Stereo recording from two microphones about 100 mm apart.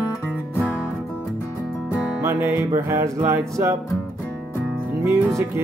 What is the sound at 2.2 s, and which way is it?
Music, 25° right (ahead or behind).